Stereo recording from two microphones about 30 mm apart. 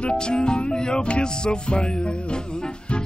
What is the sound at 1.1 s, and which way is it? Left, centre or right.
Speech, left.